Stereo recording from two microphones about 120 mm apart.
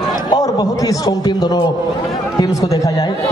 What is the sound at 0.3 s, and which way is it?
A man's voice, 35° left (ahead or behind).